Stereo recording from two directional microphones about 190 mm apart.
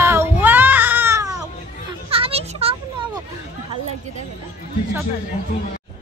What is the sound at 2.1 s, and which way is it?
Children playing, 30° right (ahead or behind).